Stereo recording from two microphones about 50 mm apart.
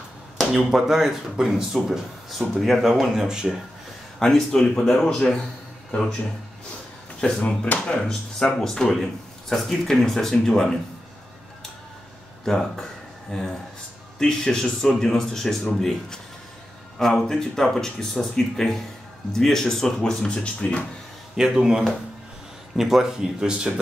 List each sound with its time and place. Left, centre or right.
0.4 s speech: centre
2.8 s speech: centre
4.2 s a man's voice: centre
7.2 s speech: centre
12.4 s speech: centre
21.4 s speech: centre